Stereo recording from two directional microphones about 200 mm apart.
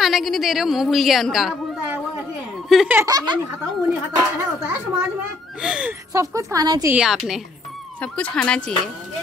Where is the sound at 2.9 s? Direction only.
20° right (ahead or behind).